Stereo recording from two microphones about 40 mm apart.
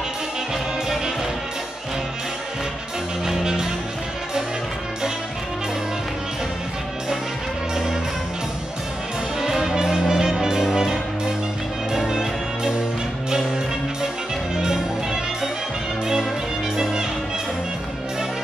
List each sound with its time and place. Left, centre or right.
3.3 s music: centre
9.4 s music: centre
16.7 s music: centre